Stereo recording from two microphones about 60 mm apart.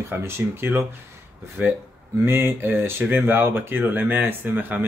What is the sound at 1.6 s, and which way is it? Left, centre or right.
Speech, right.